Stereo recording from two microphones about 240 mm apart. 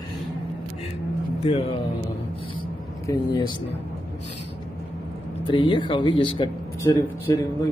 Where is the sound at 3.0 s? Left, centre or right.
Centre.